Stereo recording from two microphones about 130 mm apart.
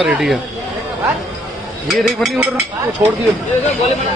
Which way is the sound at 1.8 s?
Centre (ahead or behind).